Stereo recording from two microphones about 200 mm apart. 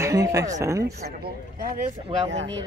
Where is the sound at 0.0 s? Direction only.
15° right (ahead or behind).